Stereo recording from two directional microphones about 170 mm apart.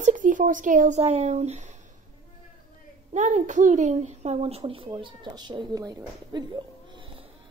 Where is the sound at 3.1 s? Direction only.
45° right (ahead or behind); by 6.4 s 25° right (ahead or behind).